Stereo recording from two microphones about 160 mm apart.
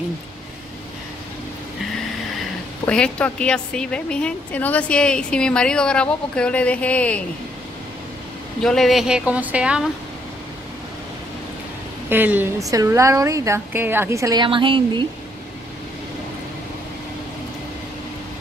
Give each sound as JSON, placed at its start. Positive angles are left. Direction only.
{"t": 2.8, "sound": "a woman's voice", "side_deg": 5}
{"t": 8.6, "sound": "a woman's voice", "side_deg": 0}
{"t": 12.1, "sound": "a woman's voice", "side_deg": -10}